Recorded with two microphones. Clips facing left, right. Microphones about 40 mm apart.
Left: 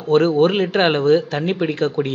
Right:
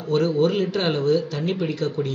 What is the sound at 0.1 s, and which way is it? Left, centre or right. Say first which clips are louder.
Speech: left 5 dB; left.